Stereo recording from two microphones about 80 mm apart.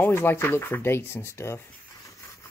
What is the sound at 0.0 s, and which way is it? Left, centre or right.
Speech, left.